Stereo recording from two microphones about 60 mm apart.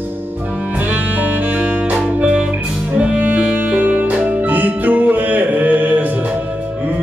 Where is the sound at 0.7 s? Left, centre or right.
Right.